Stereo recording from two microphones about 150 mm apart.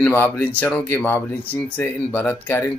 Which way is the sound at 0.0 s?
15° left (ahead or behind).